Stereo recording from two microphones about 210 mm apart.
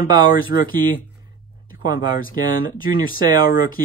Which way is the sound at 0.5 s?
55° left (ahead or behind).